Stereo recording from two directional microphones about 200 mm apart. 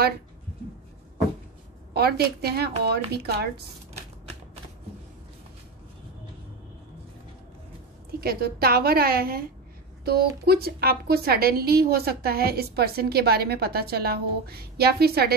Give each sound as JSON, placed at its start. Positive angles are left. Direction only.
{"t": 2.0, "sound": "a woman's voice", "side_deg": -50}
{"t": 8.2, "sound": "a woman's voice", "side_deg": -50}